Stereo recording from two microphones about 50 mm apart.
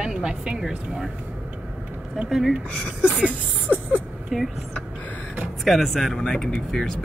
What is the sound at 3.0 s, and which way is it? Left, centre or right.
Speech, right.